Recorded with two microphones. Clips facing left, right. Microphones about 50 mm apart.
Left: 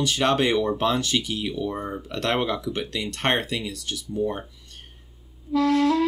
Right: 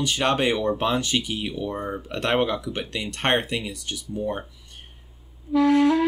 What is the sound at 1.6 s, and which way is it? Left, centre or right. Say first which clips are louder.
Speech: even; centre.